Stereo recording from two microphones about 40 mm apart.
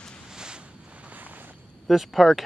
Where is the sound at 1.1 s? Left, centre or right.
Right.